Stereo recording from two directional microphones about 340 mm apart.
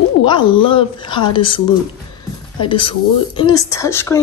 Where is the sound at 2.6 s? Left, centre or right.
Centre.